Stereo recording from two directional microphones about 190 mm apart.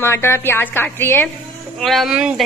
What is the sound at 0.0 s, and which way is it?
A woman's voice, 15° left (ahead or behind).